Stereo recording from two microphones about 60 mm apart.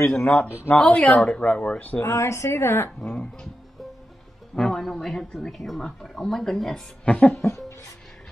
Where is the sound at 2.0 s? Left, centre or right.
Left.